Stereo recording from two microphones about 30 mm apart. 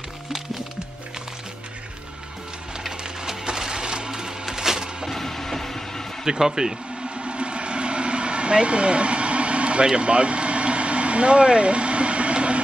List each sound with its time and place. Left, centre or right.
3.0 s a sound: right
5.0 s train: centre
6.2 s speech: centre
7.2 s vehicle: right